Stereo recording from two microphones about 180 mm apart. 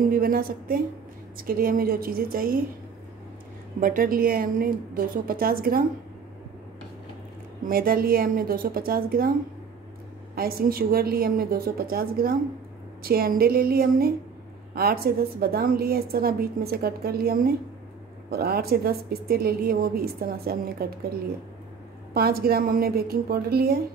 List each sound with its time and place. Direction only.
0.1 s a woman's voice: 55° right (ahead or behind)
3.8 s a woman's voice: 50° right (ahead or behind)
7.6 s a woman's voice: 55° right (ahead or behind)
10.3 s a woman's voice: 55° right (ahead or behind)
22.1 s a woman's voice: 55° right (ahead or behind)